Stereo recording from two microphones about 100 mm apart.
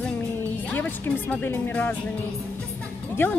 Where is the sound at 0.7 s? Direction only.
20° left (ahead or behind).